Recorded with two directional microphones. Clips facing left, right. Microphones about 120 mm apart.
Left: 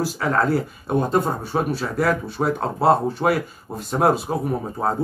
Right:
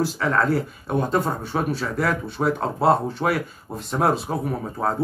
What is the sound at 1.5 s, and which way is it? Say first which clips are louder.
Speech: left 1 dB; 10° left (ahead or behind).